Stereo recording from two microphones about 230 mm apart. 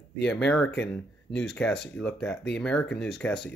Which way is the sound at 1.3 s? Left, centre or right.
Centre.